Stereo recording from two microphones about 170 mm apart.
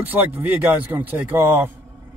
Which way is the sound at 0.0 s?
10° right (ahead or behind).